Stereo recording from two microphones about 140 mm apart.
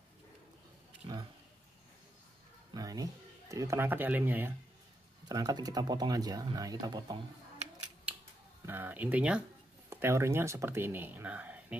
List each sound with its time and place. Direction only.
1.0 s a sound: 35° right (ahead or behind)
2.7 s speech: 25° right (ahead or behind)
5.3 s speech: 25° right (ahead or behind)
8.6 s speech: 15° right (ahead or behind)